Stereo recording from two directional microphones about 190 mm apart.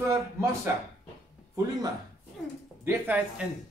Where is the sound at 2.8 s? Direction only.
10° right (ahead or behind).